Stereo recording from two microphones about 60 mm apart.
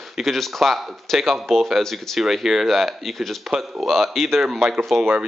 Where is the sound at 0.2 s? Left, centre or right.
Centre.